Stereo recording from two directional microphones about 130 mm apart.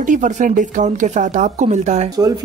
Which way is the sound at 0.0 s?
80° right.